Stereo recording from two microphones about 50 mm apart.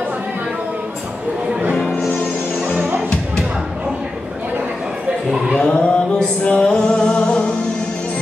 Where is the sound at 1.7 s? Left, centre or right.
Left.